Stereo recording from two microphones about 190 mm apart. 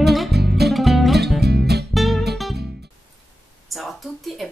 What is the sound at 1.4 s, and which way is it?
Music, 60° right (ahead or behind).